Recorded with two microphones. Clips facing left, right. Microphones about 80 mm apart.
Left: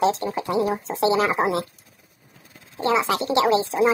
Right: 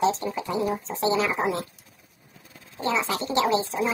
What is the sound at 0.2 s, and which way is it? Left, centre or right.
Speech, left.